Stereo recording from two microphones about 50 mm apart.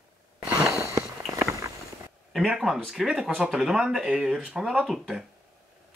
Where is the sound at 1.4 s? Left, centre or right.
Right.